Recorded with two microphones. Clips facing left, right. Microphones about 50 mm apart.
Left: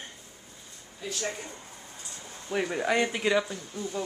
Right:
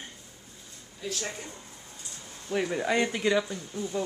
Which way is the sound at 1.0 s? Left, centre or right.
Centre.